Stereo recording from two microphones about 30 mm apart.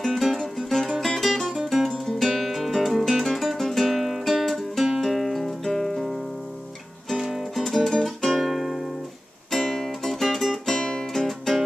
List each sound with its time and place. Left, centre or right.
0.2 s music: centre
7.2 s music: centre
7.6 s guitar: centre
8.4 s music: centre
9.5 s music: centre
10.7 s music: left
11.1 s music: centre